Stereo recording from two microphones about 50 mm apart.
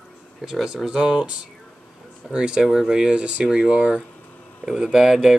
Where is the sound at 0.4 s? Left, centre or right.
Centre.